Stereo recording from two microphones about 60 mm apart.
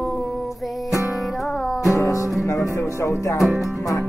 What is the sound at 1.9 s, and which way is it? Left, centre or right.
Music, left.